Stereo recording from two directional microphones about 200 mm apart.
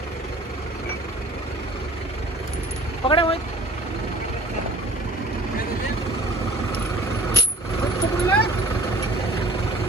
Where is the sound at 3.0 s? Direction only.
25° left (ahead or behind).